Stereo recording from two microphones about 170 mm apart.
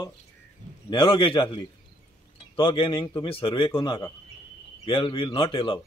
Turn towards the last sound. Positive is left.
turn(degrees=30)  # may be behind; listen again after turning